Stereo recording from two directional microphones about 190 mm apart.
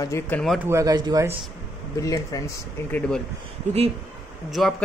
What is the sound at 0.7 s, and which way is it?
Speech, 15° right (ahead or behind).